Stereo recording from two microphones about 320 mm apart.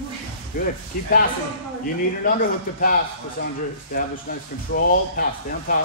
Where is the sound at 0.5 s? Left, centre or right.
Left.